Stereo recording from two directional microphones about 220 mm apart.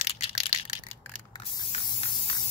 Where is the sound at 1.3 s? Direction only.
20° left (ahead or behind).